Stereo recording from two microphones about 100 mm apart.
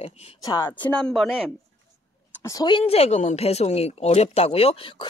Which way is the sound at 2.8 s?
90° left.